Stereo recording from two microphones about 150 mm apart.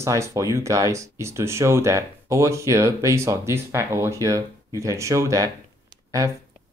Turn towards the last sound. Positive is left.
turn(degrees=-20)  # may be behind; listen again after turning